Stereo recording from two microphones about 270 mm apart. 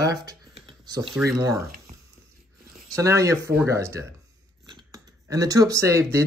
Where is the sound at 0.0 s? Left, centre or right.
Centre.